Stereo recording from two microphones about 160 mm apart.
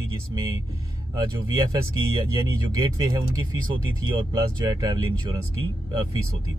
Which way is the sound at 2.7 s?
25° right (ahead or behind).